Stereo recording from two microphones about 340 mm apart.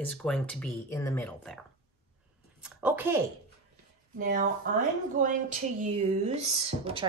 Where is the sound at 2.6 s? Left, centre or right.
Centre.